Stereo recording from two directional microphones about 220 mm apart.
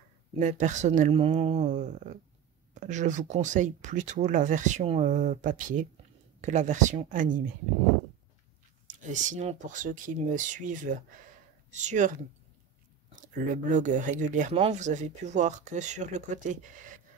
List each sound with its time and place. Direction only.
0.4 s speech: 35° right (ahead or behind)
8.8 s speech: 35° right (ahead or behind)